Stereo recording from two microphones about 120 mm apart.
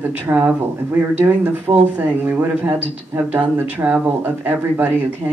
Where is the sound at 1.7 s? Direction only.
25° right (ahead or behind).